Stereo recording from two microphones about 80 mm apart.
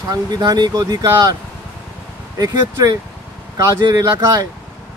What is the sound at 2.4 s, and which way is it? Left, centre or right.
Speech, right.